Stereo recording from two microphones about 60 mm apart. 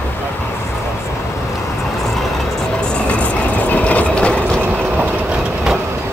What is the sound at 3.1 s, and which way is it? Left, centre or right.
Train, left.